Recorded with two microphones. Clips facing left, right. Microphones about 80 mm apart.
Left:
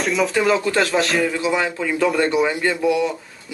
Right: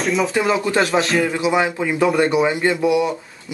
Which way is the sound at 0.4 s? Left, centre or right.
Centre.